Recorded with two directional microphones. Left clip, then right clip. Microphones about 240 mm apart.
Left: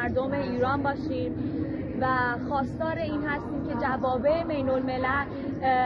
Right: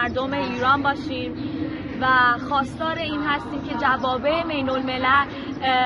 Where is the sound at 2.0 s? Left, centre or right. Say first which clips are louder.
Right 8 dB; centre.